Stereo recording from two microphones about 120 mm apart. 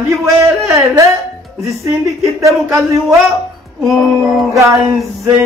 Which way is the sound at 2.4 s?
25° right (ahead or behind).